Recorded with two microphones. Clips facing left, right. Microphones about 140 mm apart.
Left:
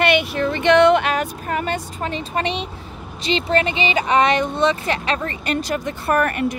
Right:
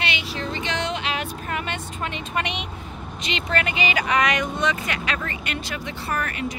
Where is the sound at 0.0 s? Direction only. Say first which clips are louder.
Left 11 dB; 55° left (ahead or behind); by 2.7 s 35° left (ahead or behind).